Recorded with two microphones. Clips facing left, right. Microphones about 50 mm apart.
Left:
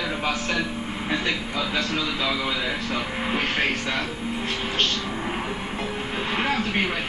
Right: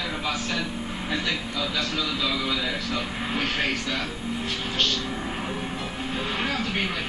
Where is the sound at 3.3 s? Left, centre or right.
Left.